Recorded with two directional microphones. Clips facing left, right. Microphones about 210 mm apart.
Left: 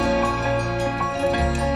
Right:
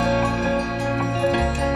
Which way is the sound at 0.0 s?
Centre (ahead or behind).